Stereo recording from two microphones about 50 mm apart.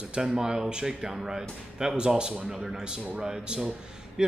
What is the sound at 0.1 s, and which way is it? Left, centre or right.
Speech, centre.